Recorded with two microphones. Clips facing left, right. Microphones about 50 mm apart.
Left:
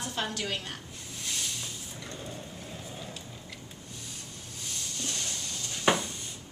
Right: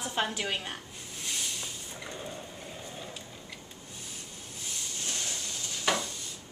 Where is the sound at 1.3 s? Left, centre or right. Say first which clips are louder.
Even; centre.